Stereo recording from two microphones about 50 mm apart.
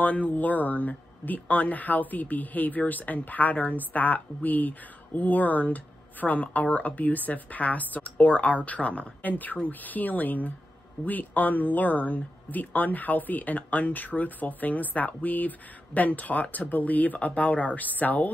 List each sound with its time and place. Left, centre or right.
0.0 s speech: left